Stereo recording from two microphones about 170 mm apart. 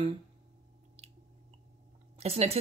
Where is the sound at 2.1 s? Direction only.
40° right (ahead or behind).